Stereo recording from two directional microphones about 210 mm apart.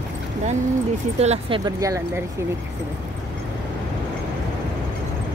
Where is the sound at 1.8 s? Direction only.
15° right (ahead or behind).